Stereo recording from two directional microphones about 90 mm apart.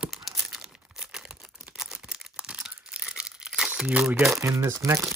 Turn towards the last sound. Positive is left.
turn(degrees=-35)  # may be behind; listen again after turning